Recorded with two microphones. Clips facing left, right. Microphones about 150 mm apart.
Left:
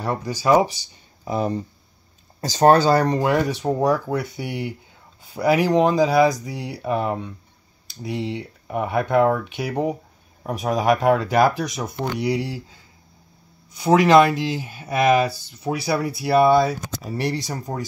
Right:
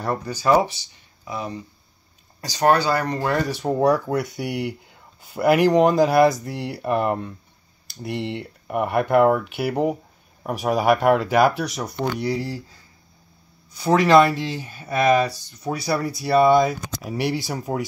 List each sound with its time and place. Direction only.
0.0 s speech: 10° left (ahead or behind)
1.2 s speech: 40° left (ahead or behind)
3.1 s speech: 15° left (ahead or behind)
3.3 s speech: centre (ahead or behind)
13.9 s speech: centre (ahead or behind)